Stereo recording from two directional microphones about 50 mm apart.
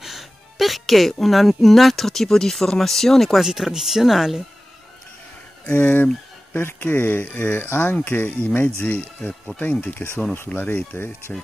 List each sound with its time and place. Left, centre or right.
0.0 s music: centre
1.2 s speech: centre
3.3 s speech: centre
5.7 s speech: left